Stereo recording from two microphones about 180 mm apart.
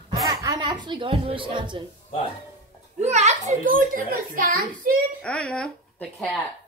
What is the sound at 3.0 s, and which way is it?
A child's voice, 40° right (ahead or behind).